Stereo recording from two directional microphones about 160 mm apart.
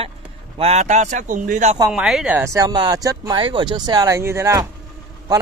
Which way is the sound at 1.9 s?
5° right (ahead or behind).